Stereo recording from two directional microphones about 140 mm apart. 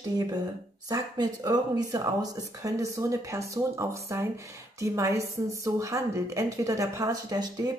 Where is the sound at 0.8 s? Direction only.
25° right (ahead or behind).